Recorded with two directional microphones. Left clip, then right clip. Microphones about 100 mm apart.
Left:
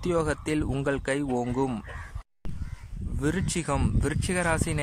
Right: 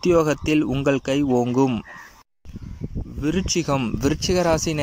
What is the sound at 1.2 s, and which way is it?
Speech, 10° right (ahead or behind).